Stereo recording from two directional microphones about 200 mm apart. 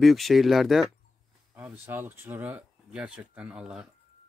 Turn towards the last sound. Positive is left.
turn(degrees=-5)  # may be behind; listen again after turning